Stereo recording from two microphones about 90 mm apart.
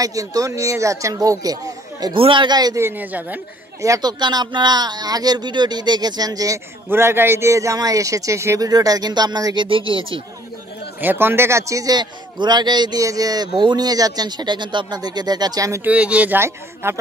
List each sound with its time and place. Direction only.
0.0 s speech: 40° right (ahead or behind)
2.1 s speech: 90° right
2.4 s speech: 50° right (ahead or behind)
2.8 s speech: 20° right (ahead or behind)
4.0 s speech: 50° right (ahead or behind)
6.9 s speech: 25° right (ahead or behind)
8.6 s speech: 45° right (ahead or behind)
9.7 s speech: 75° right (ahead or behind)
11.0 s speech: 25° right (ahead or behind); by 13.0 s 55° right (ahead or behind)
13.0 s speech: 40° right (ahead or behind)
13.6 s speech: 55° right (ahead or behind)
15.8 s speech: 15° right (ahead or behind)
16.3 s speech: 30° right (ahead or behind)